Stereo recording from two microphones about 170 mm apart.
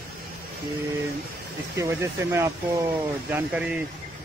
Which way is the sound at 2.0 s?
15° right (ahead or behind).